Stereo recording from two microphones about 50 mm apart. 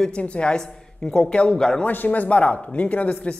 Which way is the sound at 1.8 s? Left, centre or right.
Left.